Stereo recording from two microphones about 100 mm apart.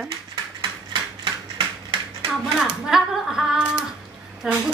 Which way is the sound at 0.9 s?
55° right (ahead or behind).